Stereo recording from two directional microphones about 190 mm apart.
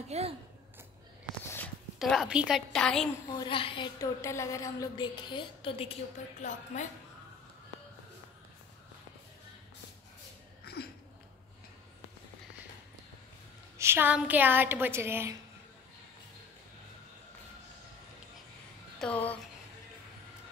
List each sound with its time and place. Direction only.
0.1 s speech: 35° right (ahead or behind)
2.0 s a woman's voice: centre (ahead or behind)
3.3 s a woman's voice: 25° left (ahead or behind)
6.4 s a woman's voice: 40° left (ahead or behind)
10.6 s a sound: 55° left (ahead or behind)
13.7 s a woman's voice: 10° right (ahead or behind)
18.9 s a woman's voice: 5° left (ahead or behind)